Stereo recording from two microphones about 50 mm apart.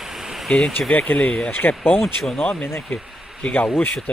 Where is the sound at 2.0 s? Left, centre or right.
Centre.